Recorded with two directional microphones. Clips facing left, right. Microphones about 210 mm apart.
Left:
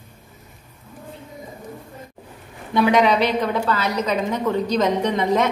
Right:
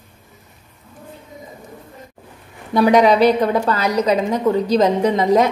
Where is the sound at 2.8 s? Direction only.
35° right (ahead or behind).